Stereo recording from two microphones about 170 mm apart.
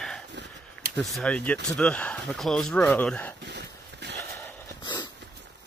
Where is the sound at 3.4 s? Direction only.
90° right.